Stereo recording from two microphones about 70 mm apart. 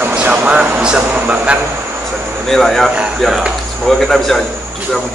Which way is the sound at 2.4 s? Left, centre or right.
Centre.